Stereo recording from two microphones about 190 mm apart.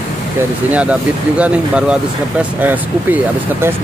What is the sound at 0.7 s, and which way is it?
Speech, 5° right (ahead or behind).